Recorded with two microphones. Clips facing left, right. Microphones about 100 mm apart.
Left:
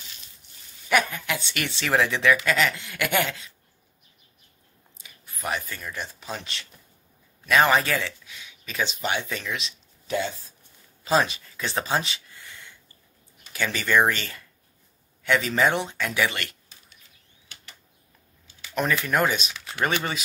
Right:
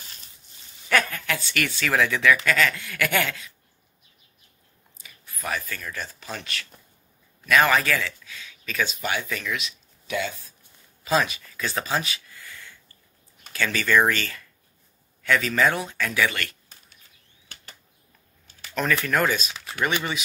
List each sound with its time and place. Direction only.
0.0 s dog: 40° right (ahead or behind)
0.8 s speech: 15° left (ahead or behind)
5.3 s speech: 20° left (ahead or behind)
19.0 s speech: 20° left (ahead or behind)